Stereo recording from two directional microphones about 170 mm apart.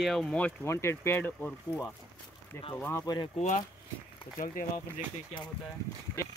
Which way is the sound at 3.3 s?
45° left (ahead or behind).